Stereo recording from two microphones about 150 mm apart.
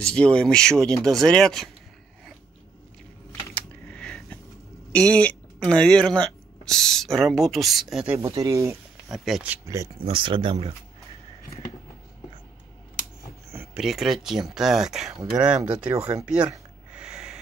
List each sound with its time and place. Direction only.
0.0 s speech: 5° left (ahead or behind)
3.5 s a sound: 5° left (ahead or behind)
4.9 s speech: 10° left (ahead or behind)
8.2 s speech: 20° right (ahead or behind)
9.1 s speech: centre (ahead or behind)
10.0 s speech: 35° right (ahead or behind)
13.7 s speech: centre (ahead or behind)
16.3 s a sound: 5° right (ahead or behind)